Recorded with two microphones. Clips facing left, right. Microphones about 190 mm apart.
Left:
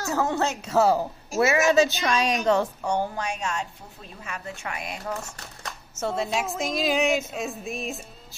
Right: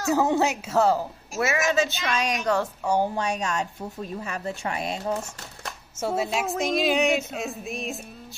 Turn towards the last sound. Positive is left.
turn(degrees=0)  # may be behind; listen again after turning